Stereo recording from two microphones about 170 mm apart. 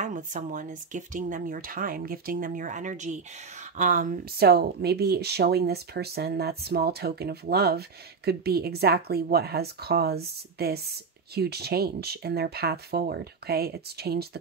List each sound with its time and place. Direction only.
0.0 s speech: 45° right (ahead or behind); by 14.4 s 70° right (ahead or behind)